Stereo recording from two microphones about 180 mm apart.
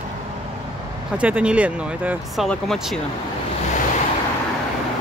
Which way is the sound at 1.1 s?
10° right (ahead or behind).